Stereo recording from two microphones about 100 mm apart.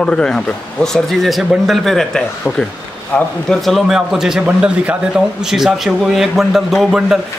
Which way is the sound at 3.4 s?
Centre (ahead or behind).